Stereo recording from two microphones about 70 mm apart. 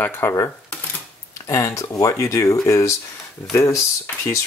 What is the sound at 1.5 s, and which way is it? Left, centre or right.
Speech, left.